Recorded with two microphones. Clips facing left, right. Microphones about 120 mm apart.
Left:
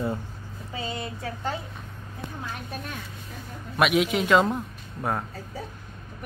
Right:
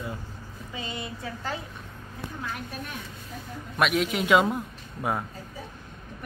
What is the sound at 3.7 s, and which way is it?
A man's voice, 5° left (ahead or behind).